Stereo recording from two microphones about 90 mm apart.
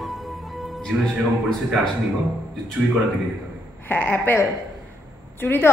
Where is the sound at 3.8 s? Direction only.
20° left (ahead or behind).